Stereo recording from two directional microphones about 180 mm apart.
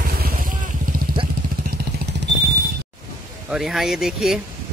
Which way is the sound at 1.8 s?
70° right (ahead or behind).